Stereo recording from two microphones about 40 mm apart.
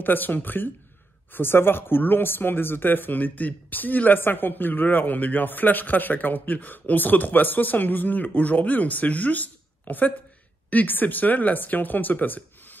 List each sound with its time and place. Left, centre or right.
0.0 s a man's voice: left
1.3 s speech: left
4.2 s a man's voice: left